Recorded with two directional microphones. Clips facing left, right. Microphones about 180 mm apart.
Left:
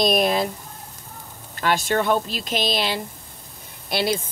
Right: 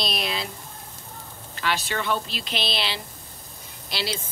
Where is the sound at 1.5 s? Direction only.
45° left (ahead or behind).